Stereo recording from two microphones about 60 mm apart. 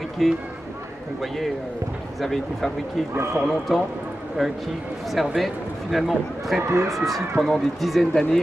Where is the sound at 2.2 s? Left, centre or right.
Centre.